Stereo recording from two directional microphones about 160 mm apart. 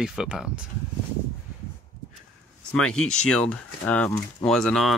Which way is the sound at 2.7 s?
5° left (ahead or behind).